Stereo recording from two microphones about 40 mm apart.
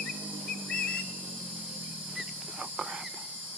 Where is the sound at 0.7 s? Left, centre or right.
Left.